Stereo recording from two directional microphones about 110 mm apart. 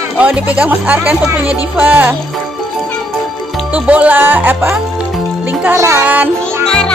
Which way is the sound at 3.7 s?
15° right (ahead or behind).